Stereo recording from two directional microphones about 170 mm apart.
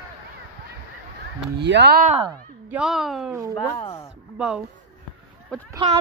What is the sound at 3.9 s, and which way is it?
Speech, 15° left (ahead or behind).